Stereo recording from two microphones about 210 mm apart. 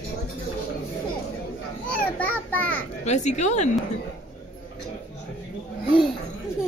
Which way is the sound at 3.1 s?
35° left (ahead or behind).